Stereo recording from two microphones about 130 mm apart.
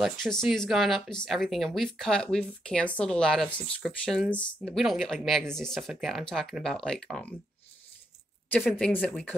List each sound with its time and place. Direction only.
0.0 s speech: 5° left (ahead or behind)
4.6 s speech: centre (ahead or behind)
8.5 s speech: 10° left (ahead or behind)